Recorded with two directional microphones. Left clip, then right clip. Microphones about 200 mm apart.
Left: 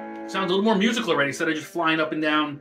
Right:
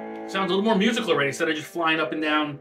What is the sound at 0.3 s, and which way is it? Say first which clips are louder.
Speech: left 1 dB; centre (ahead or behind).